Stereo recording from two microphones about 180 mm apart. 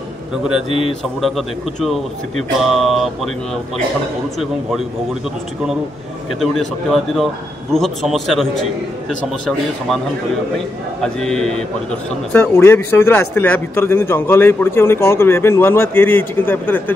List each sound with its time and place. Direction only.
0.7 s a man's voice: 35° right (ahead or behind)
1.2 s a man's voice: centre (ahead or behind)
6.4 s a man's voice: centre (ahead or behind)
11.0 s a man's voice: 5° left (ahead or behind)